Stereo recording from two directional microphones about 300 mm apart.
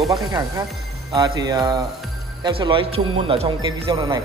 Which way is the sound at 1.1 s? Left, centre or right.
Centre.